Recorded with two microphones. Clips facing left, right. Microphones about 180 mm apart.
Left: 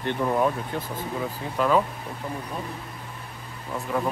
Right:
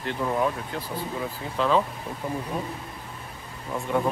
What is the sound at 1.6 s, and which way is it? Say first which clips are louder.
Speech: left 1 dB; 5° left (ahead or behind).